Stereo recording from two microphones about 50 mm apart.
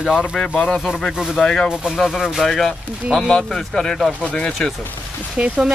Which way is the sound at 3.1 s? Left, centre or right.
Centre.